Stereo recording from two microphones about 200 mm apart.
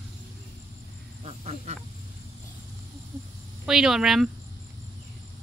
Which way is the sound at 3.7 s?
5° right (ahead or behind).